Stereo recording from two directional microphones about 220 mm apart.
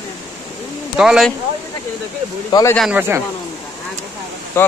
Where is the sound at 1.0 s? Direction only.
5° right (ahead or behind).